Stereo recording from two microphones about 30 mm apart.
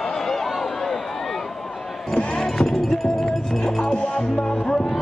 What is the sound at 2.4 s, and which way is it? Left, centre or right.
Music, centre.